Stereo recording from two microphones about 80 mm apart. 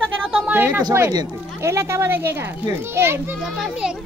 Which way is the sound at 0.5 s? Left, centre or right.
Right.